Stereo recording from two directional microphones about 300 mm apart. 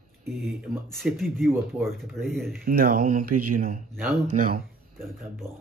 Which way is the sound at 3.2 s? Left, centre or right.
Right.